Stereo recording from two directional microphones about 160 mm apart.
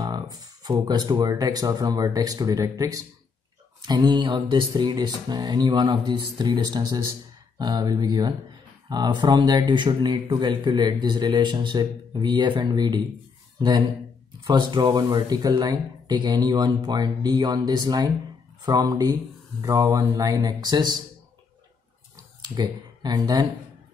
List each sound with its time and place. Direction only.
0.0 s speech: 25° right (ahead or behind)
22.5 s speech: 25° right (ahead or behind)